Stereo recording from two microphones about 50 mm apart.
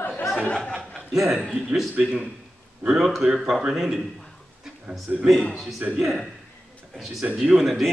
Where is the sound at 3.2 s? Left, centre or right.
Centre.